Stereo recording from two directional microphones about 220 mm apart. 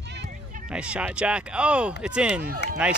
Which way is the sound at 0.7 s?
5° right (ahead or behind).